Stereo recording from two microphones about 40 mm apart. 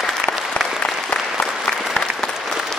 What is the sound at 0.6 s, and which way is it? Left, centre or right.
Applause, left.